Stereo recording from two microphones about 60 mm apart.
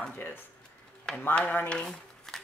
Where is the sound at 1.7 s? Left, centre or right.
Centre.